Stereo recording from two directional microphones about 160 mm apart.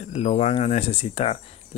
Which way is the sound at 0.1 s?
40° left (ahead or behind).